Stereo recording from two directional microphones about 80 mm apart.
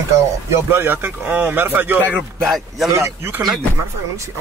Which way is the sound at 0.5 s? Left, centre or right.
Right.